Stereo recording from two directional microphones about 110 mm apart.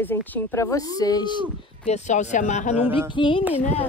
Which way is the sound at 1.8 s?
90° left.